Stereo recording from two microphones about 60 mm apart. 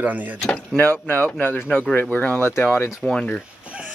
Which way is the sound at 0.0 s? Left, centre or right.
Right.